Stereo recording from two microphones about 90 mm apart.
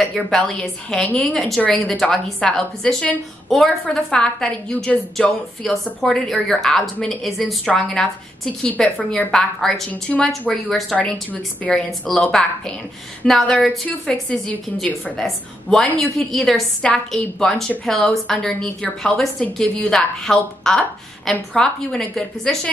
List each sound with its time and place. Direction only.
0.0 s a woman's voice: 5° left (ahead or behind)
10.1 s a woman's voice: 15° left (ahead or behind)